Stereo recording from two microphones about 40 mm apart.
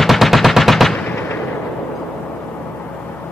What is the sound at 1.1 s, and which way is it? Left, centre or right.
Fireworks, left.